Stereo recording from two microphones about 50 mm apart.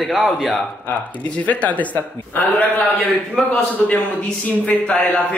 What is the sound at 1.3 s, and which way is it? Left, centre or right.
Speech, left.